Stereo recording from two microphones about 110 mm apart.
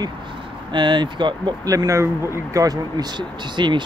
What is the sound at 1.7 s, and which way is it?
Speech, 30° right (ahead or behind).